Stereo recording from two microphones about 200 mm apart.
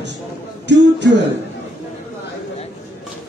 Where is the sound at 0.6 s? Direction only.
60° right (ahead or behind).